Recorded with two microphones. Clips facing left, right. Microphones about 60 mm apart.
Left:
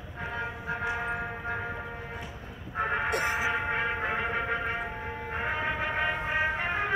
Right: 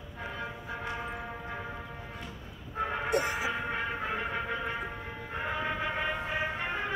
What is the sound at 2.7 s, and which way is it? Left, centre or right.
Music, left.